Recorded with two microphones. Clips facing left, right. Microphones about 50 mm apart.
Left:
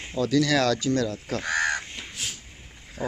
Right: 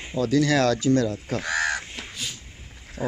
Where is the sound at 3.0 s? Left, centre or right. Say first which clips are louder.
Right 2 dB; centre.